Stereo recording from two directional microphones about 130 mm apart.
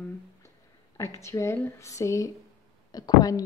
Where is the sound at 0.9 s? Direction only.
20° left (ahead or behind).